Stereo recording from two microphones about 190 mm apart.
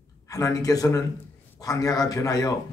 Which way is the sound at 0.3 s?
20° left (ahead or behind).